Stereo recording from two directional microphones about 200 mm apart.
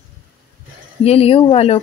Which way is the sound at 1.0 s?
30° left (ahead or behind).